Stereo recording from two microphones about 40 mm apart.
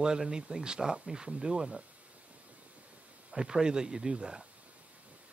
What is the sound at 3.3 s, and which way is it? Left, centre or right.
A man's voice, centre.